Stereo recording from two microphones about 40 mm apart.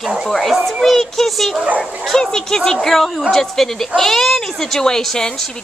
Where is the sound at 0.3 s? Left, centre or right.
Centre.